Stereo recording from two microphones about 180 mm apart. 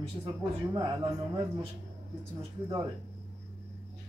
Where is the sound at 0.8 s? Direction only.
25° right (ahead or behind).